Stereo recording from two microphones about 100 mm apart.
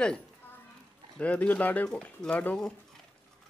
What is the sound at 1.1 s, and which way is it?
Speech, 15° left (ahead or behind).